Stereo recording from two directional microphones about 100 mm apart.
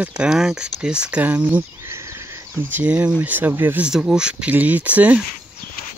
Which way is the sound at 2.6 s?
20° right (ahead or behind).